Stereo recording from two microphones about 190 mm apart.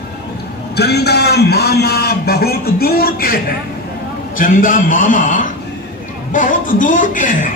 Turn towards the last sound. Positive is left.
turn(degrees=45)  # may be behind; listen again after turning